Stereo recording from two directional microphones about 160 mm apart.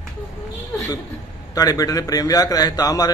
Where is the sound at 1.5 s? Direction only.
20° left (ahead or behind).